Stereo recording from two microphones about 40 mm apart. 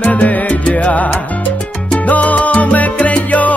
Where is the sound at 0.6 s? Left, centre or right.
Left.